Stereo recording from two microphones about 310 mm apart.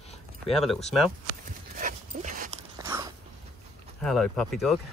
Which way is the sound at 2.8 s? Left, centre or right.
Centre.